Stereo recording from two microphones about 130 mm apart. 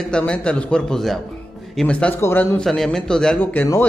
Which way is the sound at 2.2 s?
20° left (ahead or behind).